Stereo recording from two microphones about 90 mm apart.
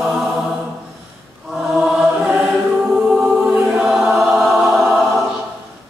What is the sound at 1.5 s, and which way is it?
Choir, 5° right (ahead or behind).